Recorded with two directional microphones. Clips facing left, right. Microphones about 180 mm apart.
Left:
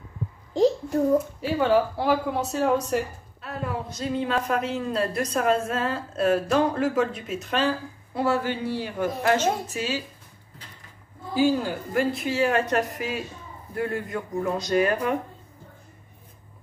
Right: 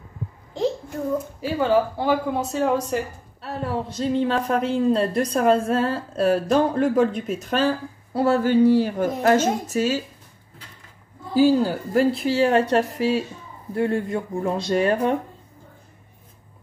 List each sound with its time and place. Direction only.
0.6 s a sound: 40° left (ahead or behind)
1.4 s speech: centre (ahead or behind)
3.3 s speech: 35° right (ahead or behind)
8.1 s a man's voice: 40° right (ahead or behind)
11.3 s speech: 35° right (ahead or behind)